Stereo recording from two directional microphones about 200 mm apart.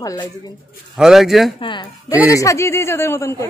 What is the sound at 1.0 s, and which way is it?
Speech, centre (ahead or behind).